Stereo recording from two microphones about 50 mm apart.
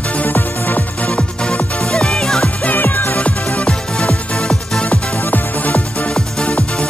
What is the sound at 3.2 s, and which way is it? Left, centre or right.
Music, left.